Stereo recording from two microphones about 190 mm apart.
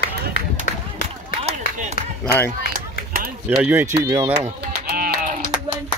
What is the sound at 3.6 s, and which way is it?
Speech, 15° right (ahead or behind).